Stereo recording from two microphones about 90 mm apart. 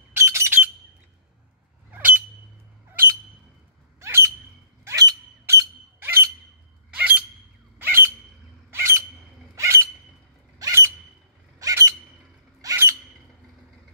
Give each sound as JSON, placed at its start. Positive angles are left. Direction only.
{"t": 0.1, "sound": "squawk", "side_deg": -30}
{"t": 1.9, "sound": "bird", "side_deg": -20}
{"t": 4.0, "sound": "squawk", "side_deg": -30}
{"t": 7.0, "sound": "squawk", "side_deg": -20}
{"t": 8.6, "sound": "a sound", "side_deg": -30}
{"t": 9.6, "sound": "bird", "side_deg": -30}
{"t": 10.6, "sound": "squawk", "side_deg": -30}
{"t": 12.6, "sound": "squeal", "side_deg": -35}